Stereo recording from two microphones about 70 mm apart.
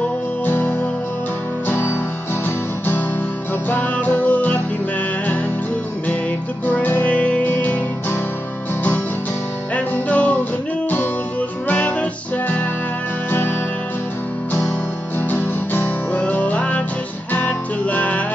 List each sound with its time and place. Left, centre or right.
0.5 s music: left
3.7 s music: left
6.6 s music: left
9.8 s music: left
11.6 s music: left
15.1 s music: left